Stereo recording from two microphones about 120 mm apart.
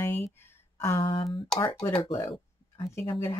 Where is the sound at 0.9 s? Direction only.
50° left (ahead or behind).